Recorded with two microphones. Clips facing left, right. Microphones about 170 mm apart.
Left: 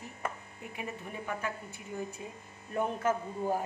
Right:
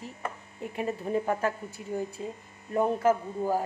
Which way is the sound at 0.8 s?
40° right (ahead or behind).